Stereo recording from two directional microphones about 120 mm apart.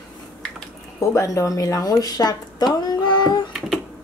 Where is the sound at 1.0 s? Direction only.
25° left (ahead or behind).